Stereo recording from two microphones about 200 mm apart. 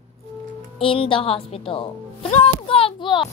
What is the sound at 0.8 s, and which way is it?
Speech, 25° left (ahead or behind).